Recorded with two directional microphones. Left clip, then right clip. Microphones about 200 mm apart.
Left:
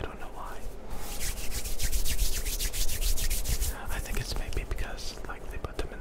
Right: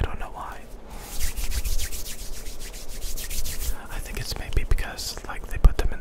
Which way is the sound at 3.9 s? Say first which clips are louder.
Right 5 dB; 5° right (ahead or behind).